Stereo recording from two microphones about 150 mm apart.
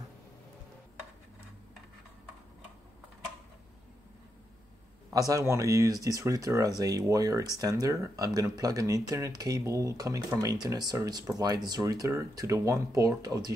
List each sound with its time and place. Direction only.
5.3 s speech: 20° right (ahead or behind)